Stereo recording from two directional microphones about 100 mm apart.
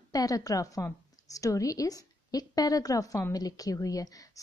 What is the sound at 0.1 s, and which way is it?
A woman's voice, 35° left (ahead or behind).